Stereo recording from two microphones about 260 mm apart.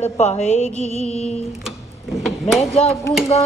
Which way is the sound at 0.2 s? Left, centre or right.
Left.